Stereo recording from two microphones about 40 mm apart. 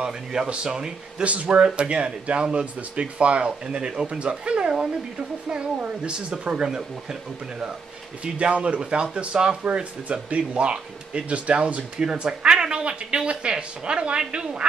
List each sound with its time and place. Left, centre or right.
0.0 s speech: centre
1.2 s speech: right
6.0 s speech: right
8.2 s speech: right